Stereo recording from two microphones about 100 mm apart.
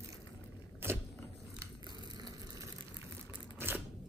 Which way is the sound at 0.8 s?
25° right (ahead or behind).